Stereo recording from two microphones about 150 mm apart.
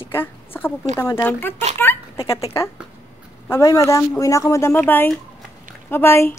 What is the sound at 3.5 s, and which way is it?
A woman's voice, 20° left (ahead or behind).